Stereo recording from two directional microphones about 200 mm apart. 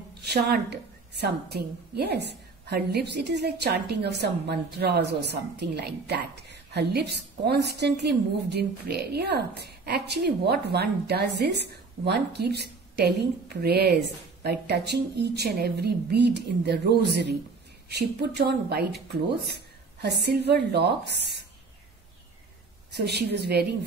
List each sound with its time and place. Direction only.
0.2 s a woman's voice: 55° right (ahead or behind)
22.9 s a woman's voice: 55° right (ahead or behind)